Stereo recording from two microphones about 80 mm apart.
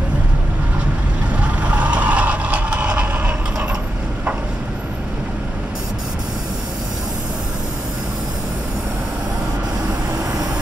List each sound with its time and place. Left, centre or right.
1.6 s vehicle: centre